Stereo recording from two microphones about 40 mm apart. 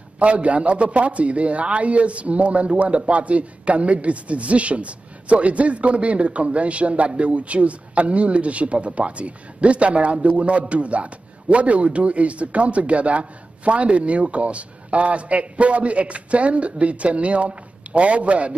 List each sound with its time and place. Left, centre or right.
0.2 s speech: right